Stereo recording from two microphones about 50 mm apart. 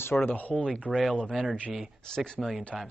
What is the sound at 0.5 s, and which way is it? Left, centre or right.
Speech, centre.